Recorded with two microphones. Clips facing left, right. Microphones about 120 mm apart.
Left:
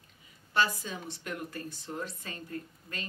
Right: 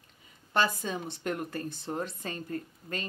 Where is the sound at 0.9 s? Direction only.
40° right (ahead or behind).